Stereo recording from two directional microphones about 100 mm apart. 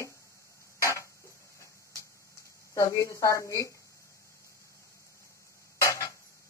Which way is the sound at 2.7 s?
30° left (ahead or behind).